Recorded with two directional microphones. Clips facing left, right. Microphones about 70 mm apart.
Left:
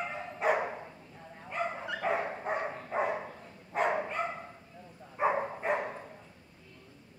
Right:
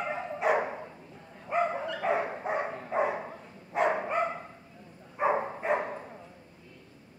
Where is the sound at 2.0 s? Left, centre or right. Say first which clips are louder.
Right 1 dB; centre.